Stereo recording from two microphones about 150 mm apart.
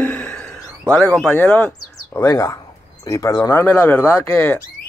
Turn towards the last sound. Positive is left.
turn(degrees=10)  # may be behind; listen again after turning